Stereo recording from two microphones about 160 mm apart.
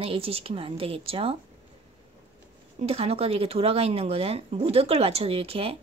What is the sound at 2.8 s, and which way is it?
Speech, 40° right (ahead or behind).